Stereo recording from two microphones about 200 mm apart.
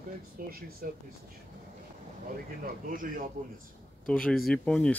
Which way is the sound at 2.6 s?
45° right (ahead or behind).